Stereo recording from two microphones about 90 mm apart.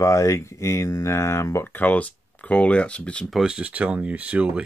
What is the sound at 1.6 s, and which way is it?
Speech, 20° left (ahead or behind).